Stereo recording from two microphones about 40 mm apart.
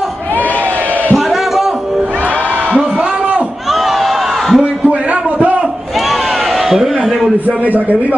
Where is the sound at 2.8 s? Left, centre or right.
Centre.